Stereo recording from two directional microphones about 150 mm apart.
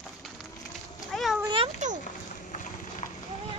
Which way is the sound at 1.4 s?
35° right (ahead or behind).